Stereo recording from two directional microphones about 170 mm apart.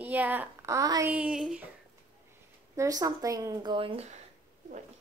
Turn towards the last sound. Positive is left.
turn(degrees=-35)  # may be behind; listen again after turning